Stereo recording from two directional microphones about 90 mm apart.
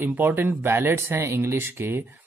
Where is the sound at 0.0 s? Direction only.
25° right (ahead or behind).